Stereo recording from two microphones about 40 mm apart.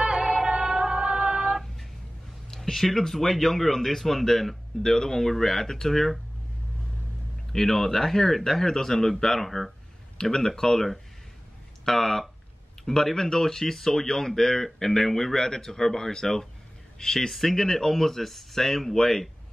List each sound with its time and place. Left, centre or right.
0.0 s music: centre
2.5 s a man's voice: centre
7.5 s a man's voice: centre
17.3 s a man's voice: centre